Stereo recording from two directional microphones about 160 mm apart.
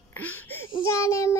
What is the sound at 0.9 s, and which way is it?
Speech, 20° left (ahead or behind).